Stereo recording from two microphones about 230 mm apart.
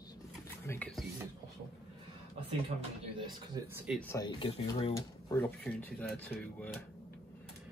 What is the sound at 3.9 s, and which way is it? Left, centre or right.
Speech, centre.